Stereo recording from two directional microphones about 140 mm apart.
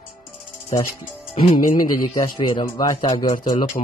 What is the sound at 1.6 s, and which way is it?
Speech, 70° left (ahead or behind).